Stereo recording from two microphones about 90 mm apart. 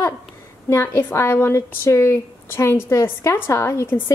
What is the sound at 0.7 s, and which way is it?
A woman's voice, 30° left (ahead or behind).